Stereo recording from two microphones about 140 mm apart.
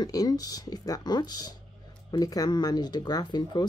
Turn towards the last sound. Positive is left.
turn(degrees=30)  # may be behind; listen again after turning